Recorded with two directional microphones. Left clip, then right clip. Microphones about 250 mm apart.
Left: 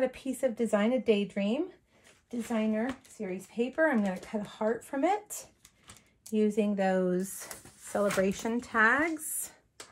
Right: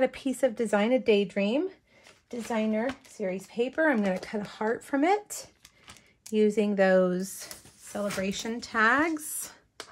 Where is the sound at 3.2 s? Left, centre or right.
Right.